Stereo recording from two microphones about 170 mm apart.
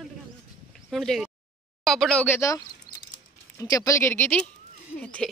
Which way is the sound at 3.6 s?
20° left (ahead or behind).